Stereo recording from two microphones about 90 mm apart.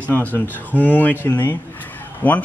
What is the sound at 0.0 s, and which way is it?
A man's voice, 20° left (ahead or behind).